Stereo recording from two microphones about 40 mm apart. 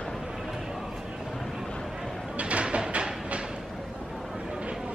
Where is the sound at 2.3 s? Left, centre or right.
Right.